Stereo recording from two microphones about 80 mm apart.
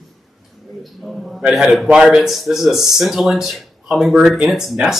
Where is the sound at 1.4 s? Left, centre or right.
Centre.